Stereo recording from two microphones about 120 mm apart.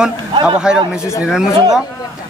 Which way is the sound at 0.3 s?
45° right (ahead or behind).